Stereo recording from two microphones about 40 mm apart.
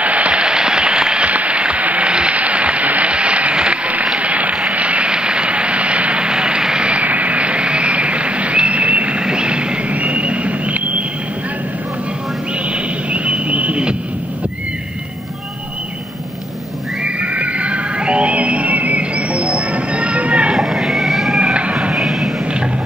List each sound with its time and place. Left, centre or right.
0.0 s applause: right
0.4 s applause: right
1.2 s applause: right
4.2 s a sound: right
9.2 s vehicle: right
12.6 s music: right
17.0 s music: right
20.5 s vehicle: centre
21.4 s music: right
21.9 s a sound: centre